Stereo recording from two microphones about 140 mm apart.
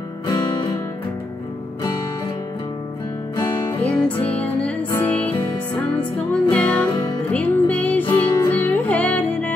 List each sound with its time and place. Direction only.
0.3 s music: 30° left (ahead or behind)
3.8 s music: 10° left (ahead or behind)
6.5 s music: 10° left (ahead or behind)
6.9 s music: 30° left (ahead or behind)
7.2 s music: 10° left (ahead or behind)